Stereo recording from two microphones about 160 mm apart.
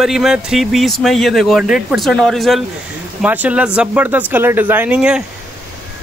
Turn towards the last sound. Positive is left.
turn(degrees=-10)  # may be behind; listen again after turning